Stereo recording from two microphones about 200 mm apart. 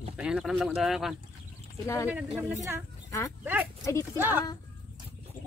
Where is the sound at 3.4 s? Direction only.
10° right (ahead or behind).